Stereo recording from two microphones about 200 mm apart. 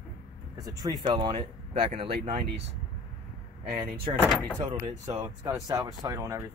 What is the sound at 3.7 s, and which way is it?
Speech, 50° right (ahead or behind).